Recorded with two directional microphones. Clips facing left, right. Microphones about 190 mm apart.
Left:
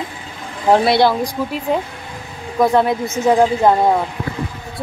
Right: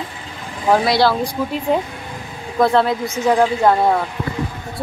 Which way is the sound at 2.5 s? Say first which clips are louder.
Left 1 dB; 15° left (ahead or behind).